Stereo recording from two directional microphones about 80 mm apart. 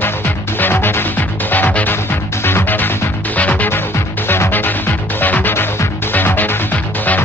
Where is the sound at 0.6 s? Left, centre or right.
Left.